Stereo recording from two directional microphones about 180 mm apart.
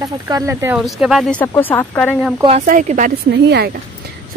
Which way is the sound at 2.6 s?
45° right (ahead or behind).